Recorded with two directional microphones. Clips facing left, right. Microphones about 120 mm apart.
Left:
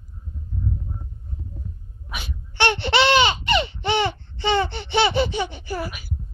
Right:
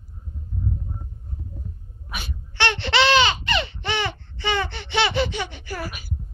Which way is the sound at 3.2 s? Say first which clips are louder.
Left 2 dB; 20° left (ahead or behind).